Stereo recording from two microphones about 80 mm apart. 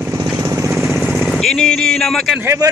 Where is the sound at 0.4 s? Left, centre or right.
Right.